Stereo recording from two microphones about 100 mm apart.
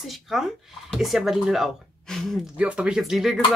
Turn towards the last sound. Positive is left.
turn(degrees=-5)  # may be behind; listen again after turning